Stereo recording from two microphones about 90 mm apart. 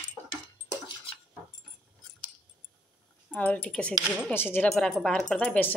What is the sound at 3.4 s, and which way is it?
Speech, 20° left (ahead or behind).